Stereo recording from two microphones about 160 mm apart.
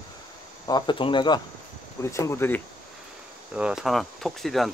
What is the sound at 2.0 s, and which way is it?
Speech, 20° left (ahead or behind).